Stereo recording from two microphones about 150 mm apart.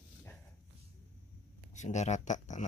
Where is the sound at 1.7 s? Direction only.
50° left (ahead or behind).